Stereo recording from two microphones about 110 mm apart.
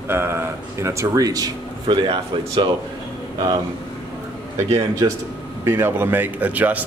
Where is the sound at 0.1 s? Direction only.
20° right (ahead or behind); by 2.7 s 45° right (ahead or behind).